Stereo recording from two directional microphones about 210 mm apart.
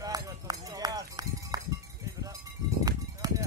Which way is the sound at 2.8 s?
15° right (ahead or behind).